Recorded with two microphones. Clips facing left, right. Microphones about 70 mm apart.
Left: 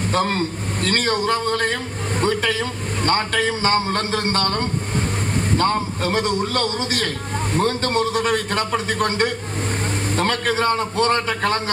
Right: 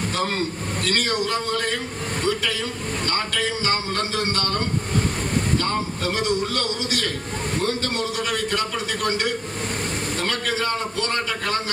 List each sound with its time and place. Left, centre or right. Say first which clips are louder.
0.1 s a man's voice: left 7 dB; left
5.6 s a man's voice: left 5 dB; left